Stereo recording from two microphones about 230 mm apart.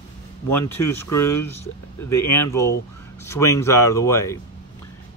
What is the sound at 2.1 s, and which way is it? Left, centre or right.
Speech, centre.